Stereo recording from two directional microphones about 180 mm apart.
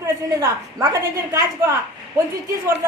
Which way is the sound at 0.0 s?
20° right (ahead or behind).